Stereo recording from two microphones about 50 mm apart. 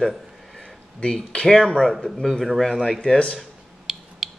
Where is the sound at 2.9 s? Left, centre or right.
Centre.